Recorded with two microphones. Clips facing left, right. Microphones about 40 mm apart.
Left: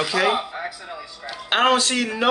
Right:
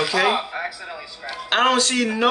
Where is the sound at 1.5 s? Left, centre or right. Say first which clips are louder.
Even; centre.